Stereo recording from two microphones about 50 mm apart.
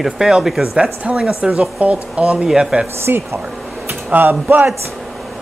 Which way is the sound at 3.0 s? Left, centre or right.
Right.